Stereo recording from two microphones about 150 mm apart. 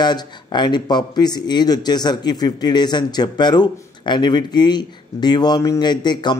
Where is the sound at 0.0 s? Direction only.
30° left (ahead or behind).